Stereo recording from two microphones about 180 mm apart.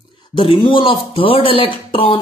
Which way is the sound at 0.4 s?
25° left (ahead or behind).